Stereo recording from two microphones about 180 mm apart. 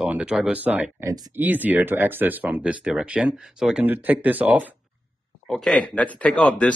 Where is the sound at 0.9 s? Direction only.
20° right (ahead or behind).